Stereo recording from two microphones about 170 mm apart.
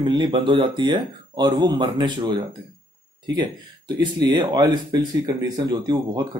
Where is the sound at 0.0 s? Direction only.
25° right (ahead or behind).